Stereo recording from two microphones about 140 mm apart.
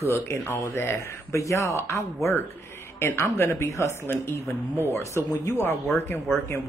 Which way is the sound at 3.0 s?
15° left (ahead or behind).